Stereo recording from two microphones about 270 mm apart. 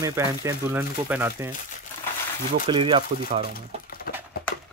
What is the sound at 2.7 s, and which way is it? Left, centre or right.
Speech, centre.